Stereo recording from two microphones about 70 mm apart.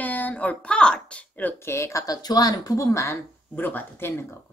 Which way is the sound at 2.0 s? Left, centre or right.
Left.